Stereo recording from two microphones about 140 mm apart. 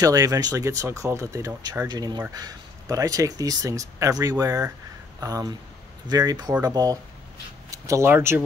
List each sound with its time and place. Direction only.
0.0 s speech: 25° right (ahead or behind)